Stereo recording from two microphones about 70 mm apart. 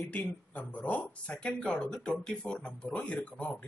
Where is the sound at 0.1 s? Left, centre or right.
Centre.